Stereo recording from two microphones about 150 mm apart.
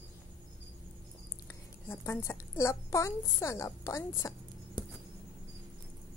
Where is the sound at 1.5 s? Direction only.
20° left (ahead or behind).